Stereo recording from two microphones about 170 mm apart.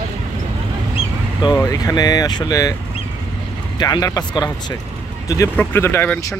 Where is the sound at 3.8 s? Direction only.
20° left (ahead or behind).